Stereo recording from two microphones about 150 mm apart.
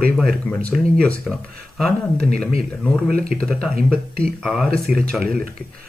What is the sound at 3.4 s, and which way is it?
Speech, 5° left (ahead or behind).